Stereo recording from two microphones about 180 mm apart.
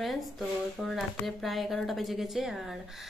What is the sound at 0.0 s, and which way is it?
A woman's voice, centre (ahead or behind).